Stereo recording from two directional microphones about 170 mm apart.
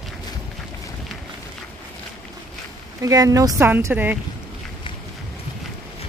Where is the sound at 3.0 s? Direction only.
20° right (ahead or behind).